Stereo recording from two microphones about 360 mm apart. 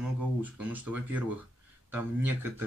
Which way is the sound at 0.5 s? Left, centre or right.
Centre.